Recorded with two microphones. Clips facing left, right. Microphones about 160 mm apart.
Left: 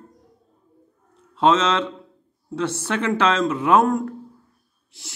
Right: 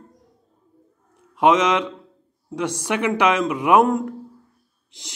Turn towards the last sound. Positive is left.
turn(degrees=-20)  # may be behind; listen again after turning